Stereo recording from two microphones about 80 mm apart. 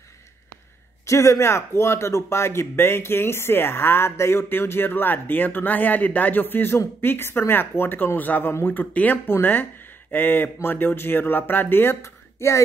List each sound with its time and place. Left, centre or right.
1.0 s speech: left